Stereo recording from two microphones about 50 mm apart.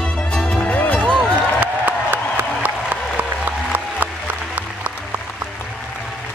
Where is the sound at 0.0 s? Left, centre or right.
Centre.